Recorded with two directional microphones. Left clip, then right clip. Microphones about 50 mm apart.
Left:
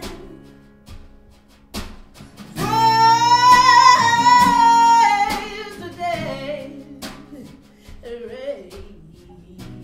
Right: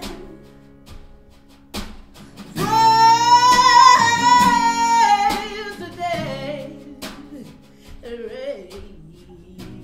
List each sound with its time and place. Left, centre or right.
2.3 s music: centre